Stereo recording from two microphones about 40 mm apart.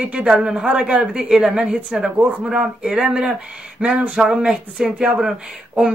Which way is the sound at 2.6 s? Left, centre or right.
Centre.